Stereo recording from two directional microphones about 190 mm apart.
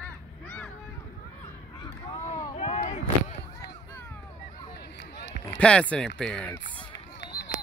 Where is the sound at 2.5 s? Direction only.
35° left (ahead or behind).